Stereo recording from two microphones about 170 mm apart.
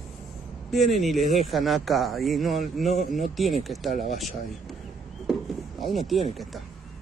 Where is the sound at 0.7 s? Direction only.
Centre (ahead or behind).